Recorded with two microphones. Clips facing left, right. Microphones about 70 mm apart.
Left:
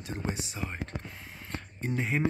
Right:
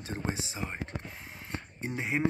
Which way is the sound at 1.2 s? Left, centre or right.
Centre.